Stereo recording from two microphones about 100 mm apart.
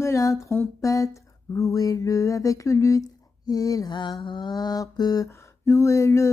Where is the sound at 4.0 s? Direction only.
50° left (ahead or behind).